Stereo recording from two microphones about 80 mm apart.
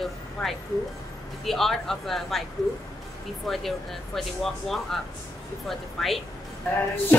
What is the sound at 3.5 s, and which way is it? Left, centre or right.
Speech, centre.